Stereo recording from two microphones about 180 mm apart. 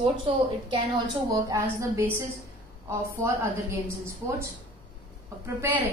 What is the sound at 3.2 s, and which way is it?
Speech, 15° right (ahead or behind).